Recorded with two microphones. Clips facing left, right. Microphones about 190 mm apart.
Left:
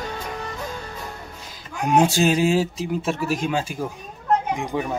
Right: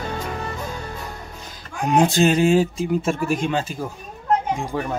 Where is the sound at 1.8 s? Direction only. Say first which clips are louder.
Right 1 dB; 5° left (ahead or behind).